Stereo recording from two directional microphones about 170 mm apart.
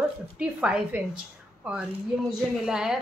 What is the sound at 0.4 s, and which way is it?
A woman's voice, 5° right (ahead or behind).